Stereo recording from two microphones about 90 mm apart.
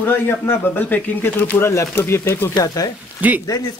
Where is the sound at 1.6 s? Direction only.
30° left (ahead or behind).